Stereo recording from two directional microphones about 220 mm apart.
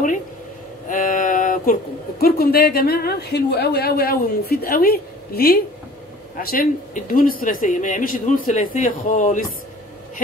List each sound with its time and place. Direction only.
0.8 s a woman's voice: 40° left (ahead or behind)